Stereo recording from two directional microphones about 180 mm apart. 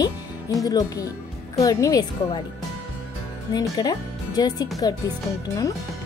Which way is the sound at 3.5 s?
20° left (ahead or behind).